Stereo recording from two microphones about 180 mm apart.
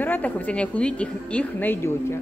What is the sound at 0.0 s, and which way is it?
A man's voice, 10° left (ahead or behind).